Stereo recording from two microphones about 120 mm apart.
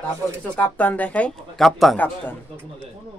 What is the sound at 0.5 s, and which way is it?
Speech, 15° left (ahead or behind).